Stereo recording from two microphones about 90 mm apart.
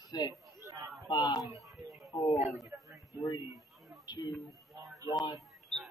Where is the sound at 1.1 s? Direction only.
50° left (ahead or behind).